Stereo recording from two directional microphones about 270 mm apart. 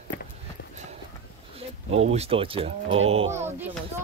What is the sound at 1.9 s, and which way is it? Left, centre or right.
Speech, right.